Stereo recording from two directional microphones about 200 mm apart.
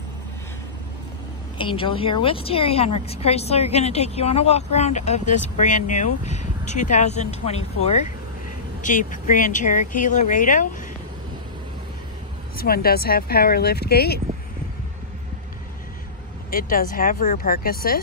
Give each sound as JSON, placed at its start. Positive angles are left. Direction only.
{"t": 1.6, "sound": "a woman's voice", "side_deg": 25}
{"t": 12.5, "sound": "speech", "side_deg": 50}
{"t": 16.4, "sound": "speech", "side_deg": 45}